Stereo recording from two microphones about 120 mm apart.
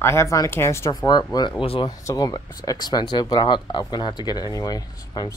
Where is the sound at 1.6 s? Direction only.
50° left (ahead or behind).